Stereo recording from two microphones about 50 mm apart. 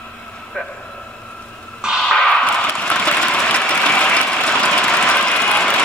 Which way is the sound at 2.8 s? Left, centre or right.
Left.